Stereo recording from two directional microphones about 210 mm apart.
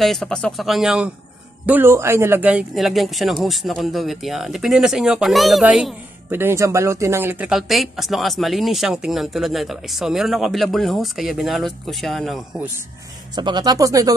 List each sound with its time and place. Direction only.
0.0 s speech: centre (ahead or behind)
13.4 s speech: 20° right (ahead or behind)